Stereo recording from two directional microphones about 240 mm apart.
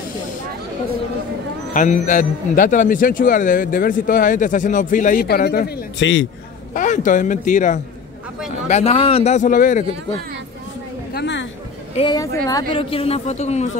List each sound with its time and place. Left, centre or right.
1.7 s a man's voice: left
6.7 s a man's voice: left
11.1 s a sound: left
11.9 s a man's voice: centre